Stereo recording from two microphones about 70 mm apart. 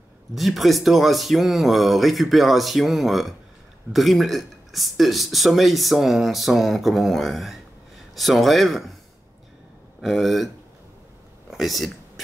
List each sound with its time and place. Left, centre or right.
0.3 s speech: centre
10.0 s speech: centre
11.5 s speech: centre